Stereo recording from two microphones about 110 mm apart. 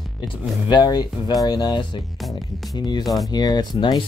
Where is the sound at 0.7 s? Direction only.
40° left (ahead or behind).